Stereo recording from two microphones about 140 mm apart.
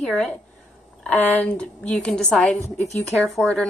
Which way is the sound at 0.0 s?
5° left (ahead or behind).